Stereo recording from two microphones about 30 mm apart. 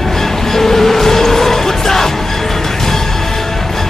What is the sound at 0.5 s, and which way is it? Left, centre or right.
Music, centre.